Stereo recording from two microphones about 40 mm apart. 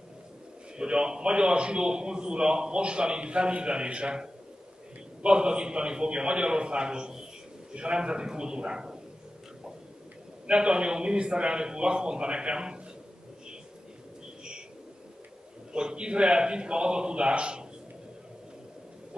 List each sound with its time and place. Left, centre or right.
0.7 s a man's voice: right
10.4 s a man's voice: right
15.7 s a man's voice: right